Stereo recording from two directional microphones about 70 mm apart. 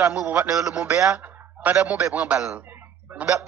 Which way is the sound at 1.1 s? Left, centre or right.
Right.